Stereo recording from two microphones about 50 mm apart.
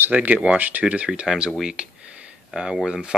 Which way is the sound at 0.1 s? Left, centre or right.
Right.